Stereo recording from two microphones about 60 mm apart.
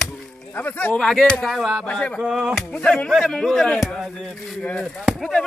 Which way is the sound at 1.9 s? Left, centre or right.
Left.